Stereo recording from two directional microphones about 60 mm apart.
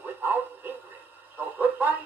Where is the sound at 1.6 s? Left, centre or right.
Right.